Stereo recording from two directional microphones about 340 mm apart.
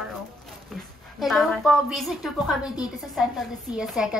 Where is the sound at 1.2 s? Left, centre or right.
Centre.